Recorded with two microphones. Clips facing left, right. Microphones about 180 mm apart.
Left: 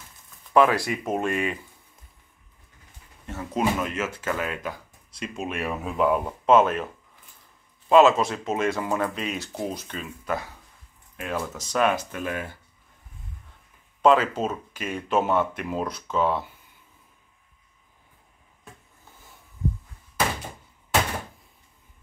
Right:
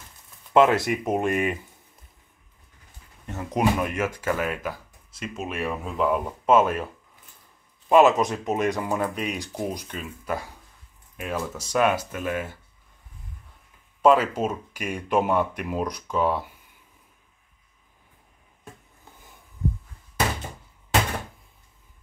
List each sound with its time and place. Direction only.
0.5 s speech: 20° right (ahead or behind)
3.3 s speech: 20° right (ahead or behind)
7.9 s speech: 15° right (ahead or behind)
14.0 s speech: 10° right (ahead or behind)